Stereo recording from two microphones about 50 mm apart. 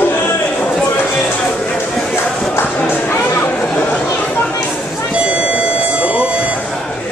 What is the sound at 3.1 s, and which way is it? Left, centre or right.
Chatter, left.